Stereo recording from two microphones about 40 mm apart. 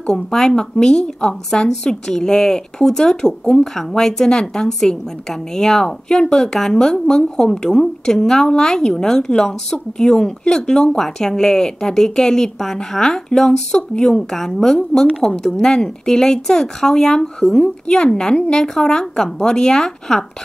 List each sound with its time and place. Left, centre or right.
0.3 s a woman's voice: centre
17.8 s speech: left